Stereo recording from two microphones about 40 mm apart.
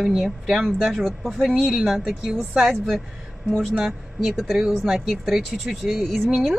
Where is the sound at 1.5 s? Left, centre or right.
Centre.